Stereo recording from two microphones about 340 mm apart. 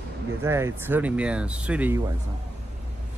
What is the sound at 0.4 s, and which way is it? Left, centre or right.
Speech, centre.